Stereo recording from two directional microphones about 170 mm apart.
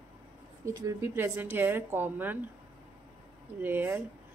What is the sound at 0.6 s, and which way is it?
Speech, 20° right (ahead or behind).